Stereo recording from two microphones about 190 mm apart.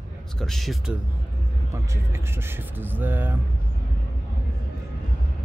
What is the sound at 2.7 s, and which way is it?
Speech, 10° right (ahead or behind).